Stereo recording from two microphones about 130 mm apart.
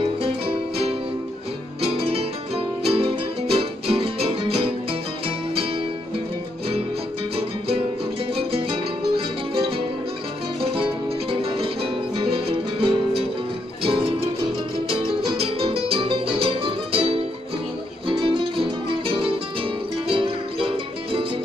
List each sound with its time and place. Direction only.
1.8 s music: 50° right (ahead or behind)
8.5 s music: 45° right (ahead or behind)
10.6 s music: 45° right (ahead or behind)
20.1 s music: 40° right (ahead or behind)